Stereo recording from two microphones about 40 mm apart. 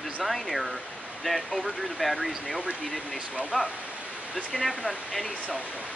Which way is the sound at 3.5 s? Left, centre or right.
Right.